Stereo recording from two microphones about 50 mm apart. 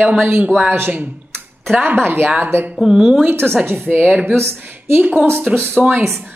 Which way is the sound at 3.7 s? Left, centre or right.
Right.